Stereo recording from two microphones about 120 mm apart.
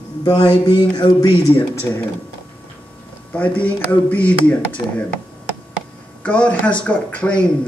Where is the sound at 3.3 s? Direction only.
10° left (ahead or behind).